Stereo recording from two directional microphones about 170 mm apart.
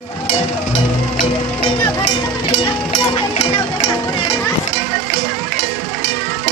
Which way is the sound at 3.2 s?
30° left (ahead or behind).